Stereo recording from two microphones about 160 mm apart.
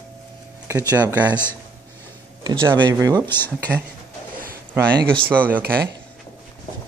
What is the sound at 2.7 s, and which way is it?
Speech, 25° right (ahead or behind).